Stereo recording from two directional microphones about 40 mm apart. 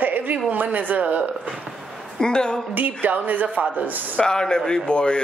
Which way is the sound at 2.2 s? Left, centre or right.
Centre.